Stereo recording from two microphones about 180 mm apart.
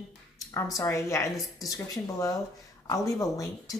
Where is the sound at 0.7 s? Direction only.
15° left (ahead or behind).